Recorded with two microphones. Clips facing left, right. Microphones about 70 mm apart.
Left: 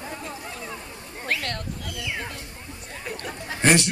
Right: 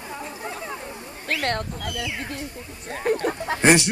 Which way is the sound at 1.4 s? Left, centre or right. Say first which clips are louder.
Right 6 dB; right.